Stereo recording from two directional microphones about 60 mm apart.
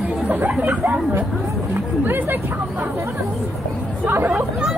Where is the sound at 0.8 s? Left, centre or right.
Right.